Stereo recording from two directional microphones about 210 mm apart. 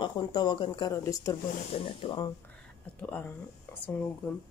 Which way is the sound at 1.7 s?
25° left (ahead or behind).